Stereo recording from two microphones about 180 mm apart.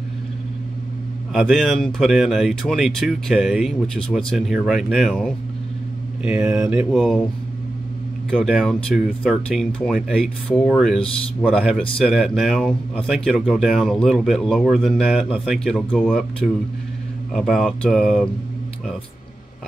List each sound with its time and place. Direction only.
1.3 s speech: centre (ahead or behind)
6.2 s mantra: 5° right (ahead or behind)
8.3 s speech: centre (ahead or behind)